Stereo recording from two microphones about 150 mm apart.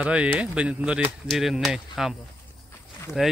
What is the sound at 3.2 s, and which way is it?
Speech, 5° right (ahead or behind).